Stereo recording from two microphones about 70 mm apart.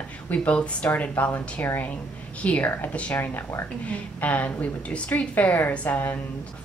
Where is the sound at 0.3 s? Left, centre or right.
Centre.